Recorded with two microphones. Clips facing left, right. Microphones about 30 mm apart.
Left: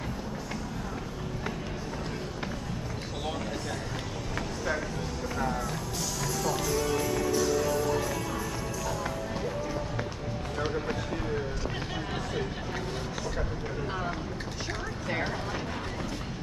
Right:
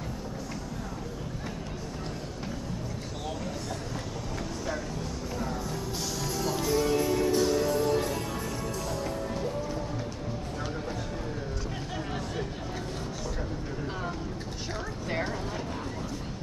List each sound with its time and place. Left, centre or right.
6.2 s music: centre
7.2 s music: right